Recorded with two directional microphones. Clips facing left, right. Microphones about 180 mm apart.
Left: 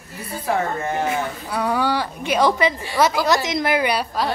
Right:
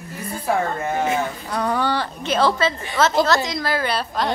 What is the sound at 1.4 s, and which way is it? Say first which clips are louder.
A woman's voice: left 2 dB; 10° left (ahead or behind).